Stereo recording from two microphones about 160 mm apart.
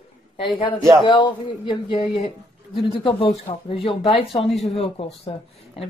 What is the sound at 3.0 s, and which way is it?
Speech, 35° left (ahead or behind).